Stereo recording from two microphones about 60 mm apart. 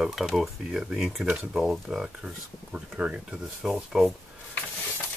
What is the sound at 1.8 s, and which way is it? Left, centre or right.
Speech, centre.